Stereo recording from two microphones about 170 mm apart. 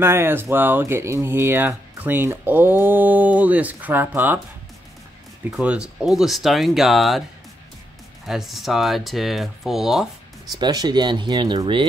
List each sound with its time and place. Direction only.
0.0 s speech: 15° right (ahead or behind)
5.5 s speech: 5° right (ahead or behind)
8.3 s speech: centre (ahead or behind)
10.6 s speech: 25° right (ahead or behind)